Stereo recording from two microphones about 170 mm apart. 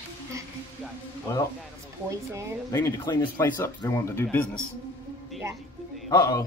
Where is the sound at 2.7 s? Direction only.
20° left (ahead or behind).